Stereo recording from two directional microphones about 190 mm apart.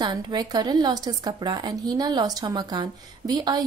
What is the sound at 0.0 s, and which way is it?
Speech, 25° right (ahead or behind).